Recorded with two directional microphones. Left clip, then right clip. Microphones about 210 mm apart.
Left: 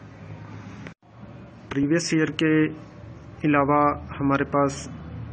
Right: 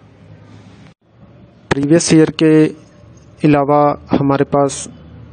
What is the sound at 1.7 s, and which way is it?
Speech, 60° right (ahead or behind).